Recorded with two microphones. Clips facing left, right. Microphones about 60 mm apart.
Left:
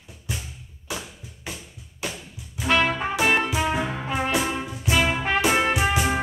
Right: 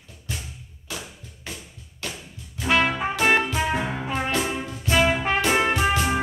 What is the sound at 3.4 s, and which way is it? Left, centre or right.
Music, centre.